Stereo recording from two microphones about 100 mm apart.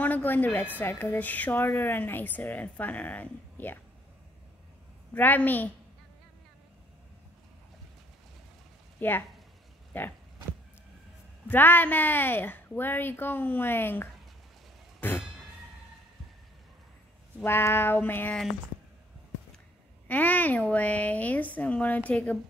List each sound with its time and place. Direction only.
0.0 s a woman's voice: 15° left (ahead or behind)
5.1 s a woman's voice: 20° left (ahead or behind)
9.0 s a woman's voice: 20° left (ahead or behind)
11.4 s speech: 20° left (ahead or behind)
15.0 s a sound: 20° left (ahead or behind)
17.4 s speech: 25° left (ahead or behind)
20.1 s a woman's voice: 15° left (ahead or behind)